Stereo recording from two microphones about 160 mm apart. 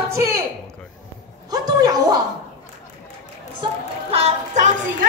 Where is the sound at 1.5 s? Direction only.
25° right (ahead or behind).